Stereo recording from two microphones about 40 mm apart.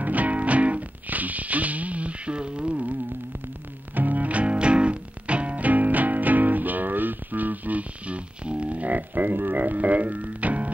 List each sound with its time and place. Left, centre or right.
0.0 s music: right
3.9 s music: right
8.5 s music: right